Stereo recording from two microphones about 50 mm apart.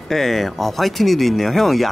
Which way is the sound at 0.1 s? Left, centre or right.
Centre.